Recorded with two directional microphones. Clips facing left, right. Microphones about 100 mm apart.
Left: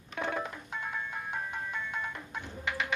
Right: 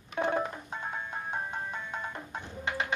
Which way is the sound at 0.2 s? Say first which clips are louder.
Right 5 dB; 35° right (ahead or behind).